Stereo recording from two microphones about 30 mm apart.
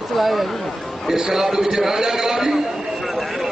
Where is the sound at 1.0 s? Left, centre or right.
Centre.